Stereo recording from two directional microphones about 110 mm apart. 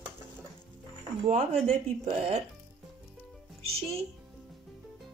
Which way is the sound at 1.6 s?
90° right.